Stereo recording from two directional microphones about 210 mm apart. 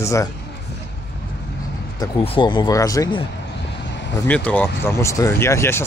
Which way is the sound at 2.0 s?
20° left (ahead or behind).